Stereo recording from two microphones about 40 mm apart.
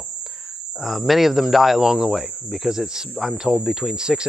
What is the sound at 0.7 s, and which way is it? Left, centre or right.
Speech, centre.